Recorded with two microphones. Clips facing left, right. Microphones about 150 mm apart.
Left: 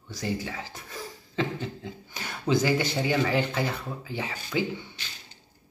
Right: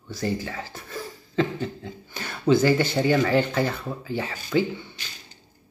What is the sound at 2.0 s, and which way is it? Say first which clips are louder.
Speech: right 7 dB; 15° left (ahead or behind).